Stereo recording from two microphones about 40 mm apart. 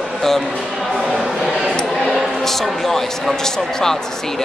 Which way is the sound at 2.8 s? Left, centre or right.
Centre.